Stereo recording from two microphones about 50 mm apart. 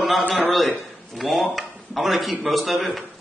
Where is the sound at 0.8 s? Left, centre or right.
Centre.